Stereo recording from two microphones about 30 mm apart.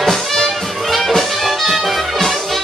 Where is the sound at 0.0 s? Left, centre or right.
Centre.